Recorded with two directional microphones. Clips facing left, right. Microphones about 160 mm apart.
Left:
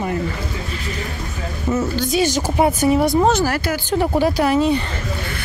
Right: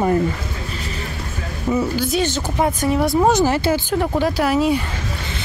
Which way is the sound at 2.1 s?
10° left (ahead or behind).